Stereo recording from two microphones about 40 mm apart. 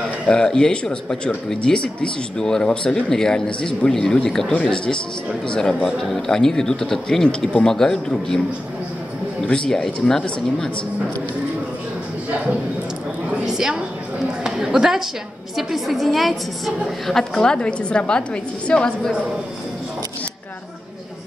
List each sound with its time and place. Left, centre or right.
0.3 s speech: centre
5.9 s a woman's voice: centre
6.2 s speech: centre
9.5 s speech: centre
13.5 s a woman's voice: centre; by 18.9 s left